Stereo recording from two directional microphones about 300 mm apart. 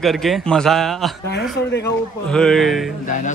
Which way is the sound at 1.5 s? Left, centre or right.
Left.